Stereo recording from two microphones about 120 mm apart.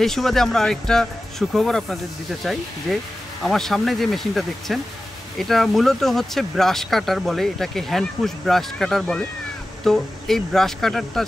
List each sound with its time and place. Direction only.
0.0 s speech: centre (ahead or behind)
3.4 s speech: 5° left (ahead or behind)